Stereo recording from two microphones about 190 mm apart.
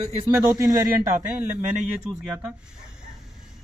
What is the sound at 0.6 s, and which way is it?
Speech, 20° right (ahead or behind).